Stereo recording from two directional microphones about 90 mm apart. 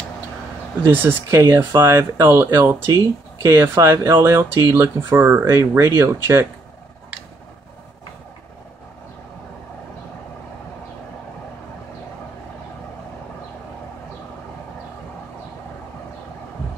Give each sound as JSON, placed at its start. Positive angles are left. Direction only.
{"t": 0.8, "sound": "speech", "side_deg": -25}